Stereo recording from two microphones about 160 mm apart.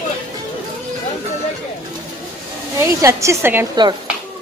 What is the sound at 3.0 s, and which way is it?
Speech, 20° right (ahead or behind).